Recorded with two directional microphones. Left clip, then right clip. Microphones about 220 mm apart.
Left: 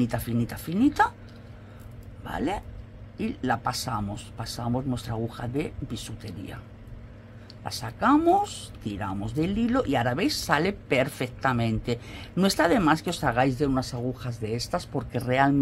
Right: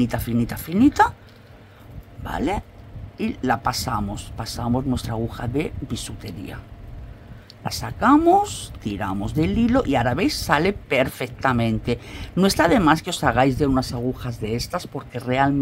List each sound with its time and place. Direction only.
0.0 s speech: 10° right (ahead or behind)
2.2 s speech: 10° right (ahead or behind)
7.6 s speech: 15° right (ahead or behind)